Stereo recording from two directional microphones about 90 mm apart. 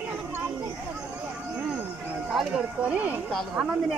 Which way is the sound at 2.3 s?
10° right (ahead or behind).